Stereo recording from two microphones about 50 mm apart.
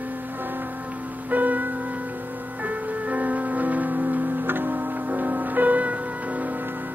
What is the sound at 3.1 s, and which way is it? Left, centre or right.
Music, right.